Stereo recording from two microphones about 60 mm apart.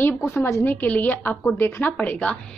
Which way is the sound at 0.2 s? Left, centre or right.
Left.